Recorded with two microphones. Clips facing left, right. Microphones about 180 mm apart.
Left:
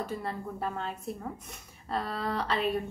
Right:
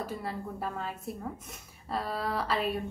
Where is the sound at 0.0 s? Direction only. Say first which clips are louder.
Left 1 dB; 5° right (ahead or behind).